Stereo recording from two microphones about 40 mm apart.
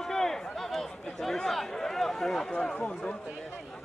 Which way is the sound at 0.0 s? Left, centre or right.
Centre.